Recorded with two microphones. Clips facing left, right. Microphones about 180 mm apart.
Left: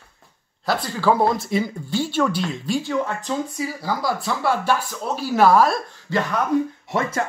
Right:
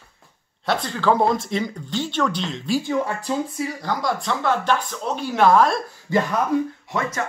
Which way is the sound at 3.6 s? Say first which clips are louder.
Even; 5° left (ahead or behind).